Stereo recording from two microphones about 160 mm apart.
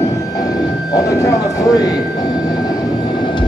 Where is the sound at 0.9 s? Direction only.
25° left (ahead or behind).